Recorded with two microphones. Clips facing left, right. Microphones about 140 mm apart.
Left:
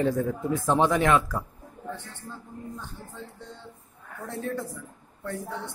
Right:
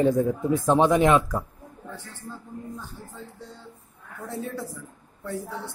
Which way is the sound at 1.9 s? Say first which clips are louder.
Left 4 dB; 40° right (ahead or behind).